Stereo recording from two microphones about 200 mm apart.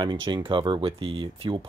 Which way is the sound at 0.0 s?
20° right (ahead or behind).